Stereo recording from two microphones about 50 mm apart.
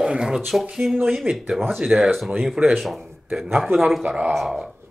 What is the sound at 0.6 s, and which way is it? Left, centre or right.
Speech, centre.